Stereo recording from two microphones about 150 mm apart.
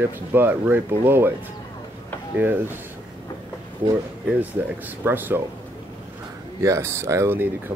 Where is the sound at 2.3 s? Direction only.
15° right (ahead or behind).